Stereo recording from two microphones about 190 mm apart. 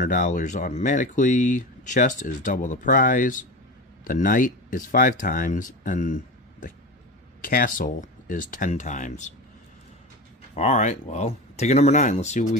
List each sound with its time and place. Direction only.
0.0 s speech: 40° left (ahead or behind)
10.5 s speech: 35° left (ahead or behind)